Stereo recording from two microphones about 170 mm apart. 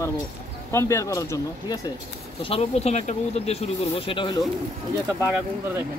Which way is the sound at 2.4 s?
35° left (ahead or behind).